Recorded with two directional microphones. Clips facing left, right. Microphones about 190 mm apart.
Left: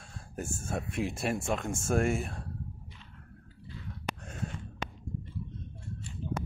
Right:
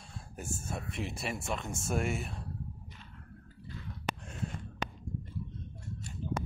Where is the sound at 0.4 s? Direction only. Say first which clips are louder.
Left 4 dB; 50° left (ahead or behind).